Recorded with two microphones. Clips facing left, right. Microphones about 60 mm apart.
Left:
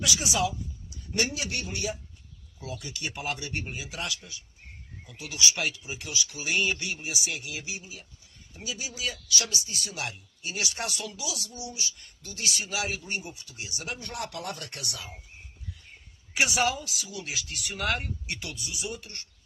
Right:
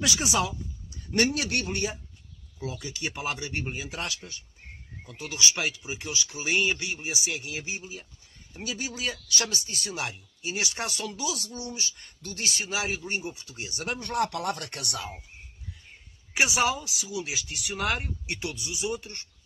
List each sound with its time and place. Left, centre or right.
0.0 s speech: right
1.1 s speech: right
2.6 s speech: right
5.6 s speech: centre; by 9.9 s right
9.9 s speech: right
10.7 s speech: right
13.9 s speech: right
16.3 s speech: centre
18.2 s speech: right